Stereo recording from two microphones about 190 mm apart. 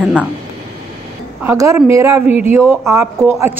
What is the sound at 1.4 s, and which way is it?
A man's voice, 15° right (ahead or behind).